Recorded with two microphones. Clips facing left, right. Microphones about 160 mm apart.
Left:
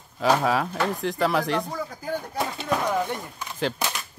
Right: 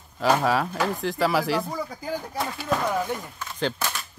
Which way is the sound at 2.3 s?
25° left (ahead or behind).